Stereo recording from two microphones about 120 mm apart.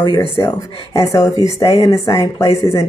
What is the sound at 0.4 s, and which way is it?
Speech, 30° left (ahead or behind).